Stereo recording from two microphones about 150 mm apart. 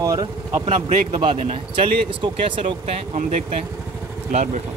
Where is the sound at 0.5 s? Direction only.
50° right (ahead or behind).